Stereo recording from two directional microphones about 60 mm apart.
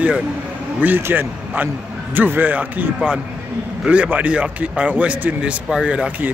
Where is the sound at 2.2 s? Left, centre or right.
Right.